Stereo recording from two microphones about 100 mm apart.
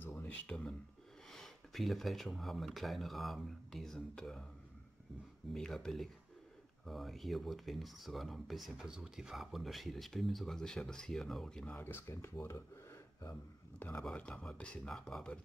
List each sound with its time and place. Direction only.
0.3 s speech: 10° left (ahead or behind)
5.5 s speech: 5° left (ahead or behind)
11.7 s speech: 20° left (ahead or behind); by 15.3 s 5° left (ahead or behind)